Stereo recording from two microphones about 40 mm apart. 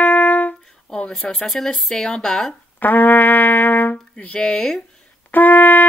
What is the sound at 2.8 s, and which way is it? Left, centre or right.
Trumpet, left.